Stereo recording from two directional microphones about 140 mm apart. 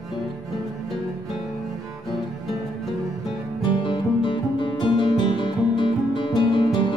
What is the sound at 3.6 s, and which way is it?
Music, 35° left (ahead or behind).